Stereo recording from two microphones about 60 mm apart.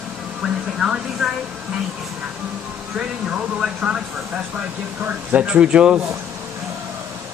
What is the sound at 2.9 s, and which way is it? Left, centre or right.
Speech, centre.